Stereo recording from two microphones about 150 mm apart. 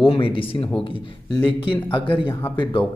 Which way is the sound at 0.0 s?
35° left (ahead or behind).